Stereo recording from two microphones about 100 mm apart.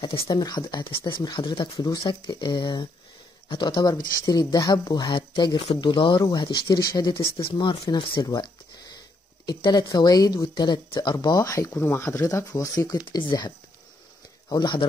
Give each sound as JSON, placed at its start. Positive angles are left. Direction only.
{"t": 0.3, "sound": "speech", "side_deg": 45}
{"t": 6.2, "sound": "speech", "side_deg": 45}
{"t": 10.5, "sound": "speech", "side_deg": 50}
{"t": 11.8, "sound": "speech", "side_deg": 25}
{"t": 14.5, "sound": "speech", "side_deg": 50}